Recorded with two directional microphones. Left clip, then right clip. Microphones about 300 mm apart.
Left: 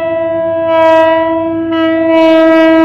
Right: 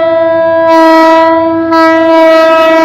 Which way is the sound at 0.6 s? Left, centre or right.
Centre.